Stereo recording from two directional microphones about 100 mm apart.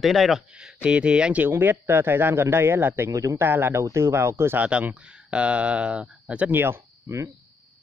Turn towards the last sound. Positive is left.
turn(degrees=-30)  # may be behind; listen again after turning